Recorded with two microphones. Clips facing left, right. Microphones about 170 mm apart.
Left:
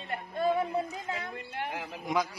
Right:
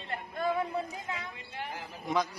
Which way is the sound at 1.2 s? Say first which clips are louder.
Left 4 dB; 60° left (ahead or behind).